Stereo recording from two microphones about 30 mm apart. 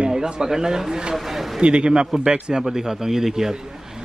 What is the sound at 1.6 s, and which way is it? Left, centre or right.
Speech, right.